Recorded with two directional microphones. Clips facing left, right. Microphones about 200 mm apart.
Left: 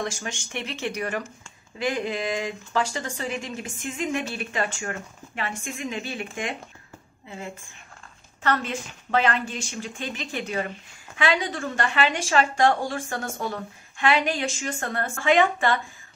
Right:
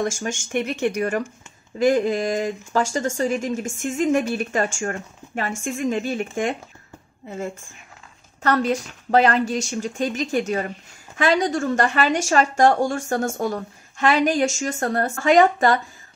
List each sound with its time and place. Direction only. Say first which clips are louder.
0.0 s speech: right 6 dB; 40° right (ahead or behind)